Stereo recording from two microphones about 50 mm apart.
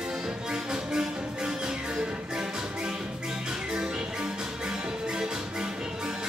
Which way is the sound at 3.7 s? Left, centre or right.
Centre.